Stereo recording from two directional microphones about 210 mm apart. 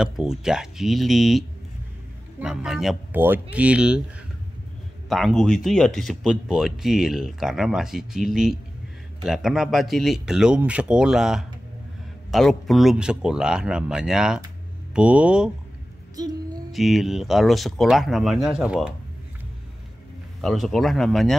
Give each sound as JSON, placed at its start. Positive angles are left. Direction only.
{"t": 0.0, "sound": "speech", "side_deg": -5}
{"t": 2.4, "sound": "speech", "side_deg": -5}
{"t": 5.1, "sound": "speech", "side_deg": 0}
{"t": 16.2, "sound": "female singing", "side_deg": -15}
{"t": 16.7, "sound": "speech", "side_deg": 0}
{"t": 20.4, "sound": "speech", "side_deg": 0}